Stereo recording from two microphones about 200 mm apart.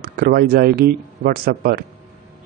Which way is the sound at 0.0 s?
50° right (ahead or behind).